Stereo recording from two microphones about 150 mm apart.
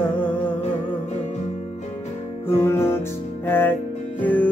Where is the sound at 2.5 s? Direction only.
15° left (ahead or behind).